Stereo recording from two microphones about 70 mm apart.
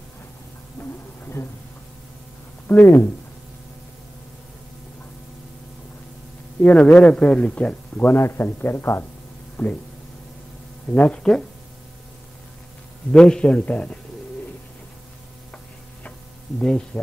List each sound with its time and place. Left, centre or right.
0.7 s a sound: left
2.7 s speech: left
6.6 s speech: left
9.6 s speech: centre
11.3 s speech: centre
13.1 s speech: centre
16.5 s speech: centre